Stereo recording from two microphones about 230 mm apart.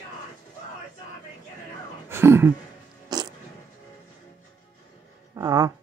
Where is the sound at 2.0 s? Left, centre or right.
Centre.